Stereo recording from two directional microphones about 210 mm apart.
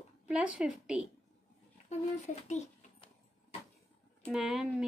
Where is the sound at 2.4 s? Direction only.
35° left (ahead or behind).